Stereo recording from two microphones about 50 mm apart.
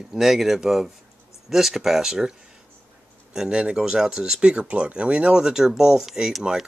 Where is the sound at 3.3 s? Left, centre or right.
Centre.